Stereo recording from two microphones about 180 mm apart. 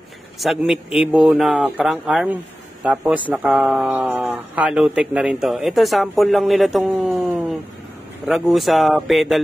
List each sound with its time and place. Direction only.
0.4 s speech: centre (ahead or behind)